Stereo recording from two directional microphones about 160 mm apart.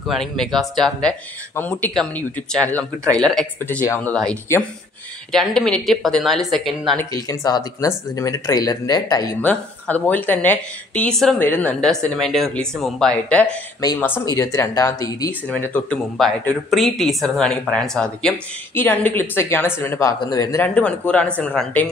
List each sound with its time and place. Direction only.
0.0 s speech: centre (ahead or behind)
7.2 s speech: 25° left (ahead or behind)
9.4 s speech: 10° left (ahead or behind)
15.4 s speech: 10° left (ahead or behind)